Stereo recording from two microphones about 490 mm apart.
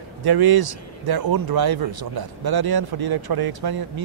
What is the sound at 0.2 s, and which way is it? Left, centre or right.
Speech, right.